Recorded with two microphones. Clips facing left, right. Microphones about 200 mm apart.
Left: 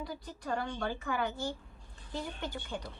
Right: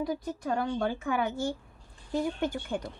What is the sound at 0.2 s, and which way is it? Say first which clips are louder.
Speech: right 6 dB; 50° right (ahead or behind).